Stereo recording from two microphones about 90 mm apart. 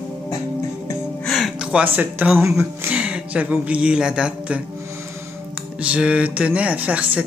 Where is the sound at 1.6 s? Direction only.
15° right (ahead or behind).